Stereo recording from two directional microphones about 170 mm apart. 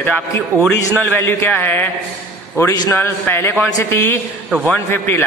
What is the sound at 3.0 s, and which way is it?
A man's voice, 15° left (ahead or behind).